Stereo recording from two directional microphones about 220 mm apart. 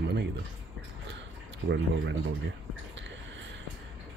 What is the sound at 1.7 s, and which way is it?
Speech, 55° right (ahead or behind).